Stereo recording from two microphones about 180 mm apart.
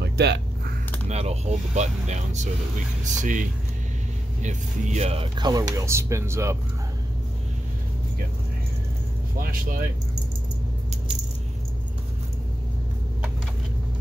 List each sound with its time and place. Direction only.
0.0 s a sound: 70° right (ahead or behind)
1.0 s speech: 40° right (ahead or behind); by 6.6 s 15° right (ahead or behind)
9.4 s speech: 50° right (ahead or behind)